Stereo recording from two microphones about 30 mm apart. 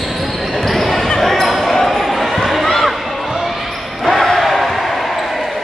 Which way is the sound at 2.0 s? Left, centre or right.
Centre.